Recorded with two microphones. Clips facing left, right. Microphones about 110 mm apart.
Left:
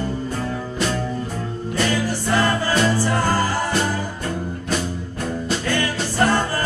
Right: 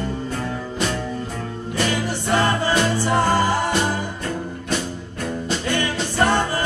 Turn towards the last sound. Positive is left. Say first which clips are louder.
# even
turn(degrees=-20)  # may be behind; listen again after turning